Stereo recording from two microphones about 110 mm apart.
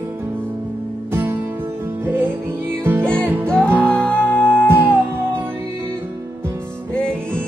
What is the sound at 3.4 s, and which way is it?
Music, 10° left (ahead or behind).